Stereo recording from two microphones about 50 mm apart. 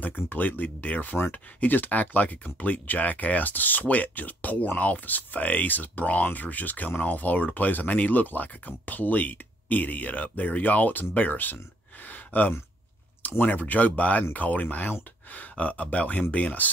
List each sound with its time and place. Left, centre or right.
0.0 s speech: left
12.1 s a sound: left
13.4 s speech: left